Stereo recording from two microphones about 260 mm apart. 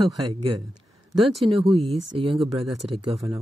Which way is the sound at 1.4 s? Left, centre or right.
Right.